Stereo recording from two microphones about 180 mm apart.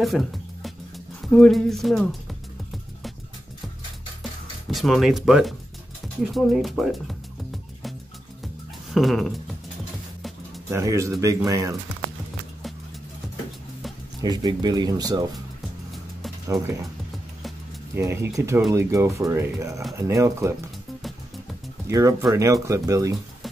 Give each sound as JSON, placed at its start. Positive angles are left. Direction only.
{"t": 0.0, "sound": "music", "side_deg": 0}
{"t": 4.2, "sound": "music", "side_deg": 0}
{"t": 6.2, "sound": "speech", "side_deg": 0}
{"t": 8.9, "sound": "speech", "side_deg": 0}
{"t": 10.7, "sound": "speech", "side_deg": -15}
{"t": 14.2, "sound": "speech", "side_deg": -25}
{"t": 17.9, "sound": "speech", "side_deg": -15}
{"t": 21.8, "sound": "speech", "side_deg": -15}